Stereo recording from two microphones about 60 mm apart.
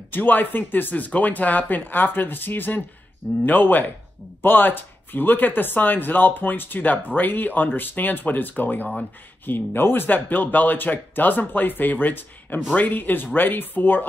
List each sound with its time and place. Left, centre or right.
0.1 s speech: left